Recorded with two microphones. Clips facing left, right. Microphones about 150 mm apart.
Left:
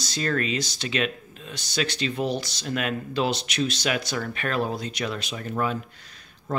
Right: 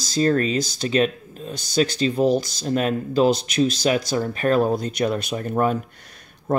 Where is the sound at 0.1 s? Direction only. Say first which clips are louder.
Right 7 dB; 35° right (ahead or behind).